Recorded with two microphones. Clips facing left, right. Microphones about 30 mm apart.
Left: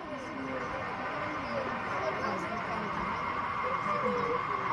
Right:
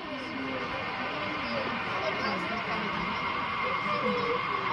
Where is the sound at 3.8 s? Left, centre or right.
Right.